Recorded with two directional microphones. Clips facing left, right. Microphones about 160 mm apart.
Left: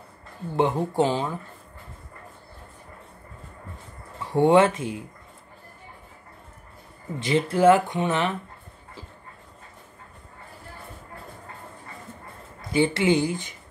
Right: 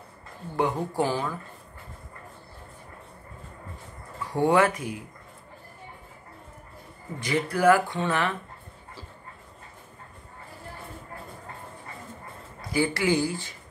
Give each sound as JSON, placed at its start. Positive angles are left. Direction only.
{"t": 0.6, "sound": "speech", "side_deg": 25}
{"t": 4.3, "sound": "speech", "side_deg": 25}
{"t": 7.2, "sound": "speech", "side_deg": 25}
{"t": 12.7, "sound": "speech", "side_deg": 20}